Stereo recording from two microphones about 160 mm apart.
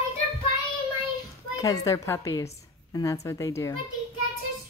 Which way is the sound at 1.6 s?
20° left (ahead or behind).